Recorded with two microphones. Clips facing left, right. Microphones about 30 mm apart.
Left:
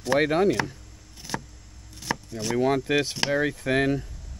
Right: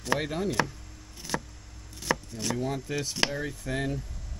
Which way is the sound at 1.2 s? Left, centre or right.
Centre.